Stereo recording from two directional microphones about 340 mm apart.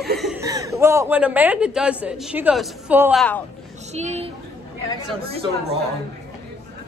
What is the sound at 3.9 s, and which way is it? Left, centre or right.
Speech, centre.